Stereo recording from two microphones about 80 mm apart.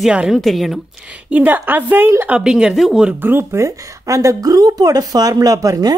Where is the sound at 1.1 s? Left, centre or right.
Centre.